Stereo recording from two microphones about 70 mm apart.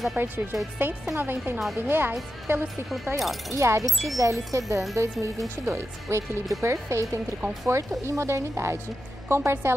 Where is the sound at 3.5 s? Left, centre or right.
Right.